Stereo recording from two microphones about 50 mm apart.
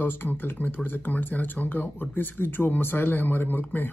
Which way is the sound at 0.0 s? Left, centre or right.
Left.